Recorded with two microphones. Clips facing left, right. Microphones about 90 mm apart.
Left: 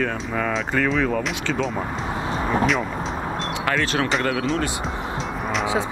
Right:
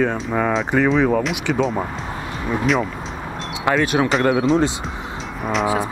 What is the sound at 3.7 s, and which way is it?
Speech, 15° right (ahead or behind).